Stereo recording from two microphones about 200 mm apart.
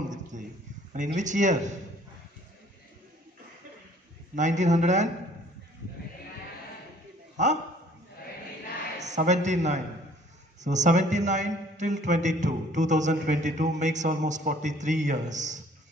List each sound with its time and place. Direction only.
0.1 s a sound: 40° right (ahead or behind)
0.9 s a man's voice: 40° right (ahead or behind)
4.4 s a man's voice: 35° right (ahead or behind)
7.4 s a man's voice: 35° right (ahead or behind)
9.0 s a man's voice: 35° right (ahead or behind)